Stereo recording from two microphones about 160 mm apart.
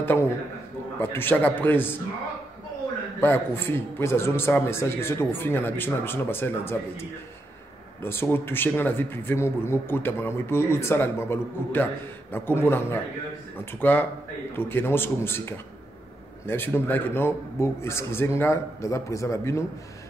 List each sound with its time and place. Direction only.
0.0 s a man's voice: 15° left (ahead or behind)
3.2 s speech: 15° left (ahead or behind)